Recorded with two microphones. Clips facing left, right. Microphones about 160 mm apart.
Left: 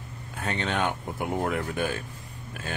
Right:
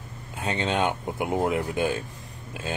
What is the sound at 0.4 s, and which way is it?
Speech, 20° right (ahead or behind).